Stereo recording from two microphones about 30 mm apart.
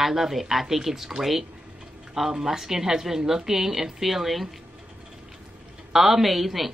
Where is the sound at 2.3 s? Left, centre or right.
Centre.